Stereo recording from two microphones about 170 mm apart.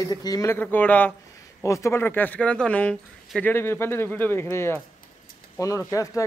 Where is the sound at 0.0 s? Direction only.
20° left (ahead or behind).